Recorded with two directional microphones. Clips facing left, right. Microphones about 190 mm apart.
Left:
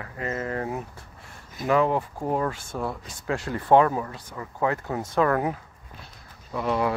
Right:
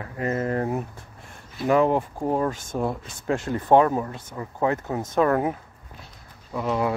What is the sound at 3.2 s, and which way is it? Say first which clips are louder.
Speech: right 3 dB; 50° right (ahead or behind).